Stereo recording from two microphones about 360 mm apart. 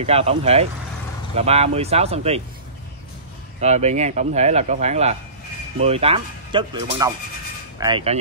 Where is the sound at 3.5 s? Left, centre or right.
Centre.